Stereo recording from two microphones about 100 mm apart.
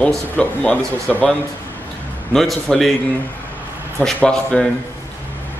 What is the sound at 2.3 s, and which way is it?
Speech, 5° left (ahead or behind).